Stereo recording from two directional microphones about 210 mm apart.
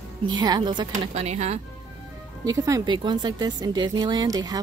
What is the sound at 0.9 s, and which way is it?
Speech, 30° right (ahead or behind).